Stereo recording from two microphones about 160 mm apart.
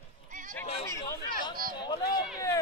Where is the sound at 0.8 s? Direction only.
20° left (ahead or behind).